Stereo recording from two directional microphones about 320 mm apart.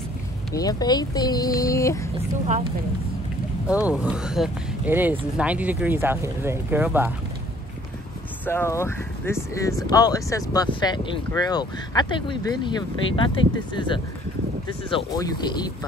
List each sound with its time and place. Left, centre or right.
0.6 s speech: centre
2.1 s a woman's voice: centre
3.6 s speech: centre
8.5 s speech: centre